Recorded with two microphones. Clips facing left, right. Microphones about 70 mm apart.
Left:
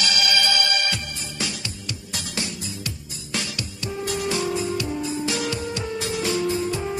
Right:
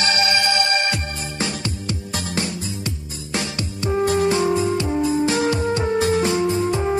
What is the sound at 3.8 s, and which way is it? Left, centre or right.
Music, right.